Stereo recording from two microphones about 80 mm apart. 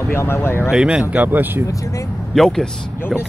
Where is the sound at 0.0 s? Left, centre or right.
Left.